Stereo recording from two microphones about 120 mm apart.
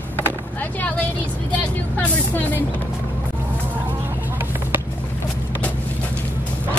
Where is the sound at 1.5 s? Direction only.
15° left (ahead or behind).